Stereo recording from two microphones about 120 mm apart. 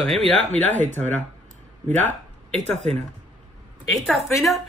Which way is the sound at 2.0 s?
10° left (ahead or behind).